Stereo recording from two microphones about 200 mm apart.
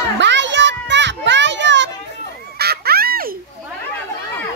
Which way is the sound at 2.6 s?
50° right (ahead or behind).